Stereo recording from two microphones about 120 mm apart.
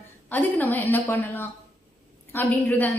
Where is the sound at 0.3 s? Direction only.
15° left (ahead or behind).